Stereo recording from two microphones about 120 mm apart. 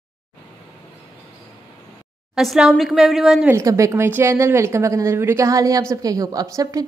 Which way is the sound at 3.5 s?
25° right (ahead or behind).